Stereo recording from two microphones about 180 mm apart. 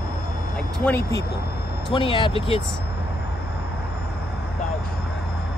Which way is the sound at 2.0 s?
25° left (ahead or behind).